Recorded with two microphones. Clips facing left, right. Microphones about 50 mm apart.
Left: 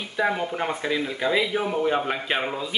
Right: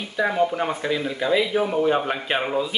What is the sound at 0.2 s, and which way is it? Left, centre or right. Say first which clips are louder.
Speech: right 3 dB; centre.